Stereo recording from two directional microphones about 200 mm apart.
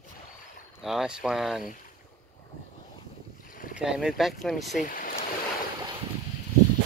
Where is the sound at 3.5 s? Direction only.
40° left (ahead or behind).